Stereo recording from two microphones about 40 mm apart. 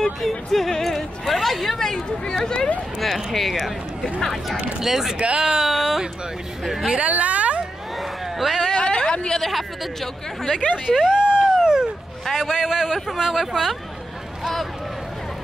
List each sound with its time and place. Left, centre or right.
0.0 s speech: centre
3.0 s a man's voice: centre
5.4 s a man's voice: centre
7.0 s a woman's voice: right
8.4 s speech: centre
8.7 s a sound: left
9.4 s speech: centre
10.9 s a sound: centre
12.4 s a man's voice: centre